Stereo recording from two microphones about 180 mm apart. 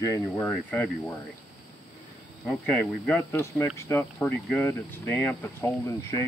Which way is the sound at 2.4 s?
5° left (ahead or behind).